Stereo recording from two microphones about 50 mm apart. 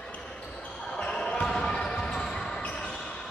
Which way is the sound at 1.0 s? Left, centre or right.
Centre.